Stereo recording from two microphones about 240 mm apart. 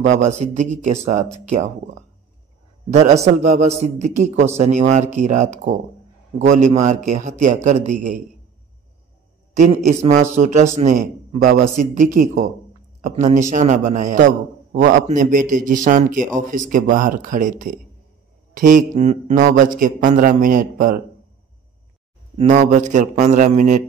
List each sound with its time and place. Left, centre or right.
0.0 s speech: right
3.3 s speech: right
9.8 s a man's voice: right
22.4 s a man's voice: right